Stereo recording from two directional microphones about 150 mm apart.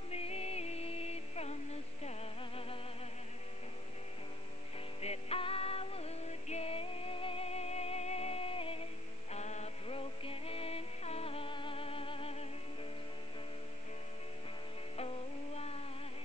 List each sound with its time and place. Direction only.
0.1 s music: 45° left (ahead or behind)
5.0 s music: 40° left (ahead or behind)
15.0 s a sound: 40° left (ahead or behind)